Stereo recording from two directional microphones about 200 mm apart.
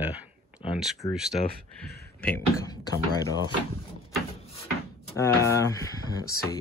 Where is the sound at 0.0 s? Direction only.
5° right (ahead or behind).